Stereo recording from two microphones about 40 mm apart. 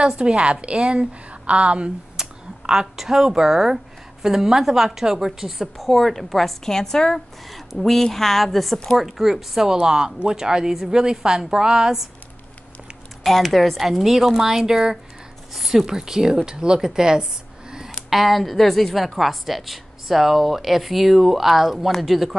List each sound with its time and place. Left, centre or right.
0.0 s a woman's voice: right
2.1 s speech: centre
7.4 s speech: centre
13.2 s speech: centre
18.1 s speech: centre